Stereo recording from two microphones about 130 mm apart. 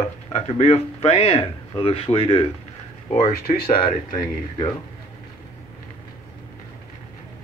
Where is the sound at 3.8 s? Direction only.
35° left (ahead or behind).